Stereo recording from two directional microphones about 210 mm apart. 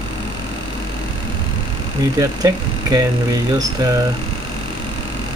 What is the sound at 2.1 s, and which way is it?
Speech, 15° right (ahead or behind).